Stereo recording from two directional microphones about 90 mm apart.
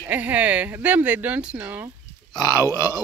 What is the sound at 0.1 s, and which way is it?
Speech, 15° right (ahead or behind).